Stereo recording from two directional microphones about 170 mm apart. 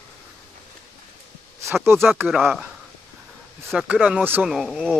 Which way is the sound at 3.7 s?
5° right (ahead or behind).